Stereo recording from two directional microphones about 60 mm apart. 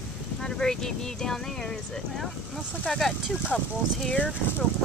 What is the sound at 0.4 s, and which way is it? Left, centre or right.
Speech, centre.